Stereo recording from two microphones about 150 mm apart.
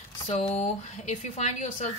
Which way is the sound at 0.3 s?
50° left (ahead or behind).